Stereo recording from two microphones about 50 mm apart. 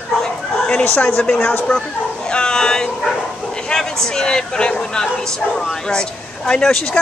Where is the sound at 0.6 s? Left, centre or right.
Left.